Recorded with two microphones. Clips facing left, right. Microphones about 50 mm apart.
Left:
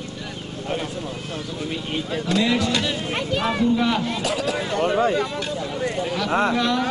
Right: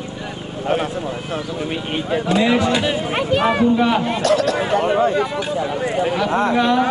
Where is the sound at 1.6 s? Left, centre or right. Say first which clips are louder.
Right 4 dB; right.